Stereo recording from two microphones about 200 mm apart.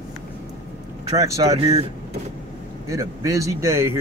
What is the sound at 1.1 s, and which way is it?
Speech, 15° right (ahead or behind).